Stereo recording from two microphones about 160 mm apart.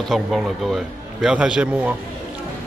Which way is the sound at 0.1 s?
Centre (ahead or behind).